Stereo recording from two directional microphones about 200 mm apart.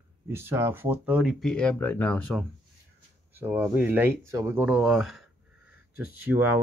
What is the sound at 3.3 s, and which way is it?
Speech, 10° right (ahead or behind).